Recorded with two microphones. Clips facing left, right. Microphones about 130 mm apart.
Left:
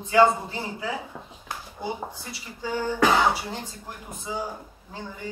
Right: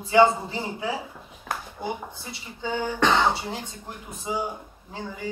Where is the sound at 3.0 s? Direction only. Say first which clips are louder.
Left 1 dB; 5° left (ahead or behind).